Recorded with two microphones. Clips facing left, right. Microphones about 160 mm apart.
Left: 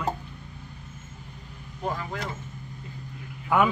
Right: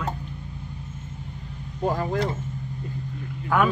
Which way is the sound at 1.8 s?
35° right (ahead or behind).